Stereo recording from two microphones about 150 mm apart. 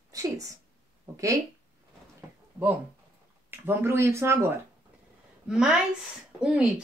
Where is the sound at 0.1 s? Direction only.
20° right (ahead or behind).